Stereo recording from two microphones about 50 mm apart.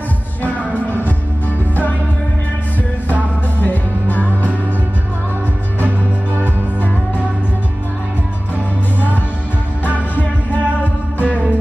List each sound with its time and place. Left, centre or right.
0.8 s music: left
10.1 s music: left